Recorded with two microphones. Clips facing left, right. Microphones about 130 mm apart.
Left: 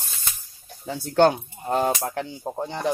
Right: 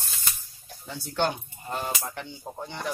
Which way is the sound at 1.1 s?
55° left (ahead or behind).